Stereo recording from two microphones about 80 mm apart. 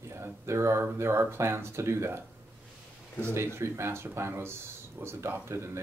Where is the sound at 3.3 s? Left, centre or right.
Right.